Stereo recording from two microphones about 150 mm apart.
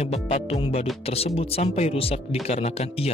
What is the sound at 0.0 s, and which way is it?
Speech, 45° left (ahead or behind).